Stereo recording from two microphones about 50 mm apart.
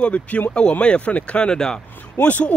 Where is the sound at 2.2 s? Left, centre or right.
Left.